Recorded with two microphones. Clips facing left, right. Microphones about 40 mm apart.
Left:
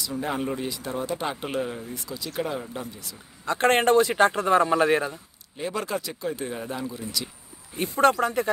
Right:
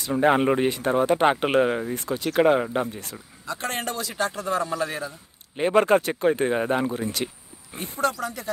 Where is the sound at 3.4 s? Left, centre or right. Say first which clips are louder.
Left 9 dB; left.